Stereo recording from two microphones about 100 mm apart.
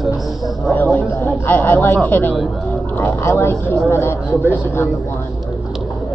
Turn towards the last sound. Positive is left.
turn(degrees=25)  # may be behind; listen again after turning